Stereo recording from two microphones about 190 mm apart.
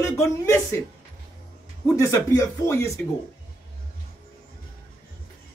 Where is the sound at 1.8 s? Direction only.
15° left (ahead or behind).